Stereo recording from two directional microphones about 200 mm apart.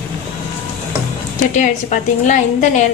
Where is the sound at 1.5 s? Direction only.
40° left (ahead or behind).